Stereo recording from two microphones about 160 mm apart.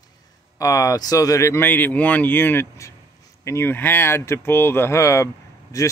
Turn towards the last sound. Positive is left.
turn(degrees=20)  # may be behind; listen again after turning